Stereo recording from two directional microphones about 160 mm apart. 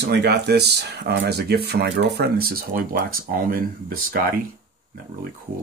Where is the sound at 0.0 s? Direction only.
90° right; by 4.3 s 65° right (ahead or behind).